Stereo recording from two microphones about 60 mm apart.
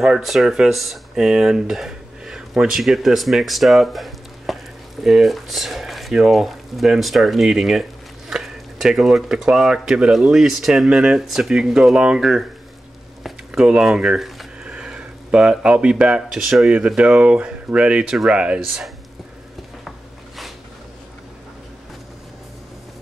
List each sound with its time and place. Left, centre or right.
0.0 s speech: centre
13.5 s speech: centre
16.7 s speech: centre